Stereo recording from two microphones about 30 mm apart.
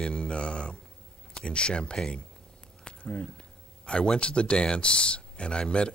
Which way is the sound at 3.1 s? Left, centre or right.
Left.